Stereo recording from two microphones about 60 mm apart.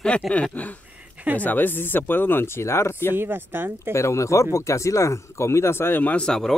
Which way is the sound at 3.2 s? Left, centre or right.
Right.